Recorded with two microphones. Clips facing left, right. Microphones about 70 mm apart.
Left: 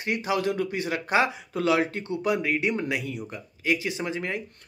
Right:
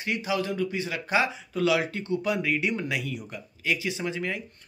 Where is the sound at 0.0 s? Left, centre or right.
Left.